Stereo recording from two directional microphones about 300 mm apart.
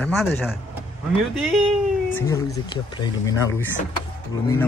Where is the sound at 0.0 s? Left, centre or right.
Centre.